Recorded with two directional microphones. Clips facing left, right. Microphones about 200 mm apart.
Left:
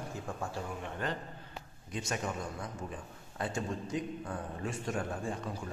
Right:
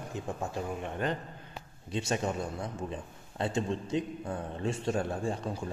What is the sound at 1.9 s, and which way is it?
A man's voice, 30° right (ahead or behind).